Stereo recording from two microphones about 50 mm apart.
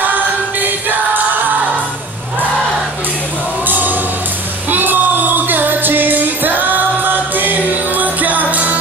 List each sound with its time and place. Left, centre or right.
0.0 s music: right
3.6 s music: right